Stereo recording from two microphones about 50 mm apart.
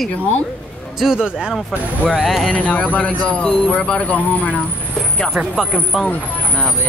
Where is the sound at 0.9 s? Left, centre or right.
Centre.